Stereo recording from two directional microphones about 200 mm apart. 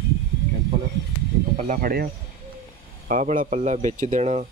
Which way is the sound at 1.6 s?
40° right (ahead or behind).